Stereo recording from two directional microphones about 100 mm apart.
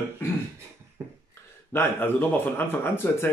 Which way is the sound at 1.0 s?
25° right (ahead or behind).